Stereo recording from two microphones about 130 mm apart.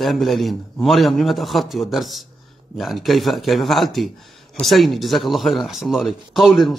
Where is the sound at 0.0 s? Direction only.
Centre (ahead or behind).